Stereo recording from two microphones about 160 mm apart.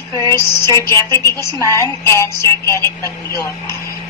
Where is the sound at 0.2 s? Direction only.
20° left (ahead or behind).